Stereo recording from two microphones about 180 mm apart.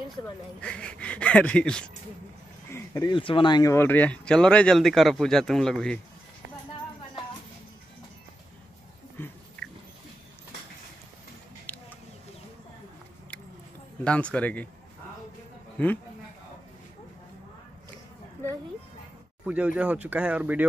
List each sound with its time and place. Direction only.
0.2 s speech: 5° left (ahead or behind)
2.7 s speech: 20° left (ahead or behind)
3.7 s speech: 10° left (ahead or behind)
9.2 s biting: 10° left (ahead or behind)
11.7 s a sound: 10° left (ahead or behind)
14.0 s speech: 5° left (ahead or behind)
19.4 s speech: 10° right (ahead or behind)